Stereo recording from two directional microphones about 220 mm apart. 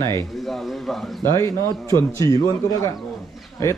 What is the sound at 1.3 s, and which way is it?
Speech, 15° left (ahead or behind).